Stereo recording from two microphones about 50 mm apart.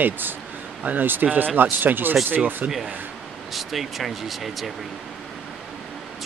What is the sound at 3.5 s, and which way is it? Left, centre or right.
Speech, centre.